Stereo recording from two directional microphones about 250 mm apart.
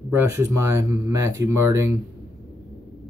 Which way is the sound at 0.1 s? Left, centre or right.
Centre.